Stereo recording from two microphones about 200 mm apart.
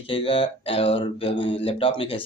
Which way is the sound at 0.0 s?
25° left (ahead or behind).